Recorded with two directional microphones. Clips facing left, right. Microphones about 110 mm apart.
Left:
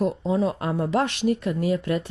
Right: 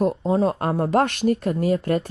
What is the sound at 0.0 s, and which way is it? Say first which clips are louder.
Speech: right 3 dB; 45° right (ahead or behind).